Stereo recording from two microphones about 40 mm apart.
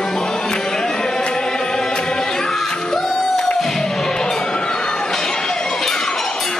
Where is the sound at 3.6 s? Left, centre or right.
Centre.